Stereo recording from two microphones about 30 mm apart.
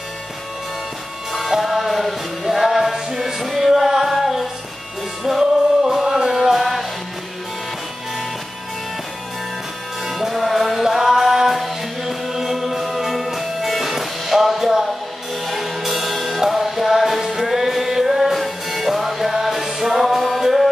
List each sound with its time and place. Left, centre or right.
1.6 s music: centre
4.1 s female singing: centre
5.9 s music: centre
6.3 s music: centre
10.1 s music: centre